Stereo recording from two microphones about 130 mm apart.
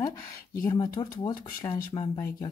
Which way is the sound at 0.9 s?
30° left (ahead or behind).